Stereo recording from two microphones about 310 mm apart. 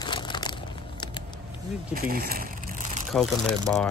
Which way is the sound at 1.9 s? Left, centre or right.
Right.